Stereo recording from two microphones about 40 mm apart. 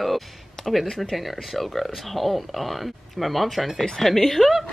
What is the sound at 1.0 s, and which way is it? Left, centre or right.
A woman's voice, centre.